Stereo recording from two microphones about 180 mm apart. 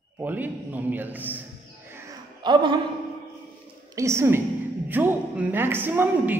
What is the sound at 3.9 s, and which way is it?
A man's voice, 15° right (ahead or behind).